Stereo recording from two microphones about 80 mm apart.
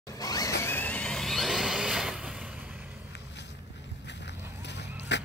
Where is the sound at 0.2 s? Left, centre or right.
Left.